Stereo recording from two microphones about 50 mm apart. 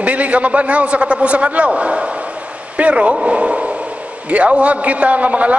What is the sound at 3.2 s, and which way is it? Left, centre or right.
Radio, right.